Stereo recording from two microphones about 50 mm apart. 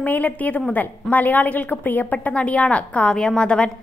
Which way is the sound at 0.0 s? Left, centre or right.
Left.